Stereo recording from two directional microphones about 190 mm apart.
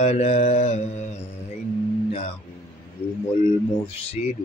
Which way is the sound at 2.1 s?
30° left (ahead or behind).